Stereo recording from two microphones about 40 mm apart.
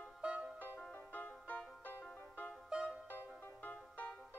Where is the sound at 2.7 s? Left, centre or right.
Right.